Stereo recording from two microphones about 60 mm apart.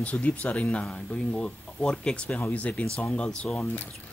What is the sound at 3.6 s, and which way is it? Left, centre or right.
Speech, left.